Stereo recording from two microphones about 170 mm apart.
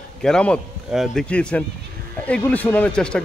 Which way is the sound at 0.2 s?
5° left (ahead or behind).